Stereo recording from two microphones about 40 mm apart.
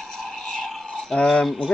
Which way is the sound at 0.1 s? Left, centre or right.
Centre.